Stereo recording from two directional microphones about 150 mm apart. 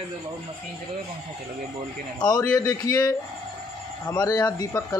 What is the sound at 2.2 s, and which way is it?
Speech, 25° left (ahead or behind).